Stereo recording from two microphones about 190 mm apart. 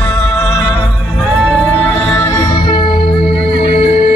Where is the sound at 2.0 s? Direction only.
10° left (ahead or behind).